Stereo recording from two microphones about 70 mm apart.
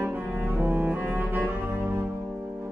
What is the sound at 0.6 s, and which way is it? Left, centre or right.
Music, right.